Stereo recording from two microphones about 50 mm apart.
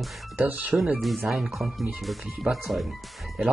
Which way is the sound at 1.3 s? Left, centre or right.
Centre.